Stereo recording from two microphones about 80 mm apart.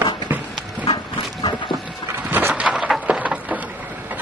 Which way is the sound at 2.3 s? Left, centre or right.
Right.